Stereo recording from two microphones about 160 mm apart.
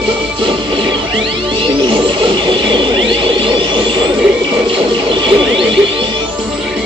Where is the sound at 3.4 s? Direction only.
30° right (ahead or behind).